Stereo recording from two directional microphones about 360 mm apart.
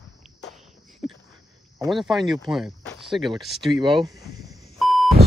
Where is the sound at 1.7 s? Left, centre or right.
Centre.